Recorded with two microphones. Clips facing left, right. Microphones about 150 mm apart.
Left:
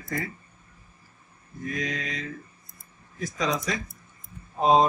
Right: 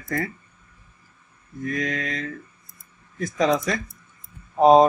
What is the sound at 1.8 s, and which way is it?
Speech, 55° right (ahead or behind).